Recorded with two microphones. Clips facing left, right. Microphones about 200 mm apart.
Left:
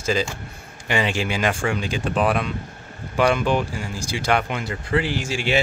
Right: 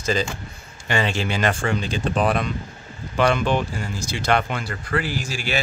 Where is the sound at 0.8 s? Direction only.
15° left (ahead or behind).